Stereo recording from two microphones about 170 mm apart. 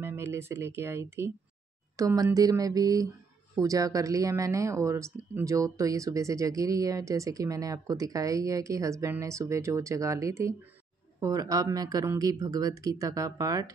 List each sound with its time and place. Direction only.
0.0 s speech: 15° right (ahead or behind)